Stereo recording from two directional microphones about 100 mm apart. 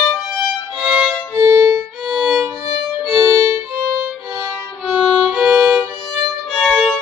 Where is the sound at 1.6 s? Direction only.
Centre (ahead or behind).